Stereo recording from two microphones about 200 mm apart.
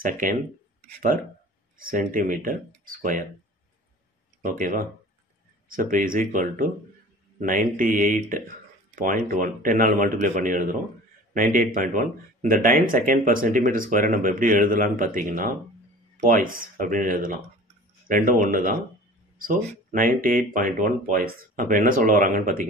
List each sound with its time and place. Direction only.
0.0 s a man's voice: 40° right (ahead or behind)
1.8 s speech: 45° right (ahead or behind)
4.4 s a man's voice: 40° right (ahead or behind)